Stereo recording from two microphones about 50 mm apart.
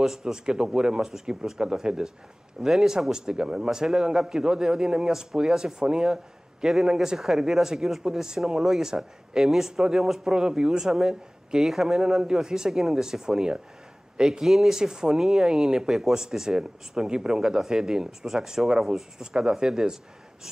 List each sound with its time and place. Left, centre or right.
0.0 s speech: centre
3.1 s speech: centre
10.3 s speech: centre
14.4 s speech: centre